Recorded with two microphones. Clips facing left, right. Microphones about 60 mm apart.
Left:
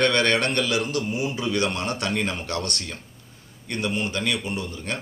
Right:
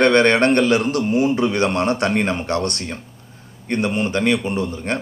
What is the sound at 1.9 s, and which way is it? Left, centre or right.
A man's voice, right.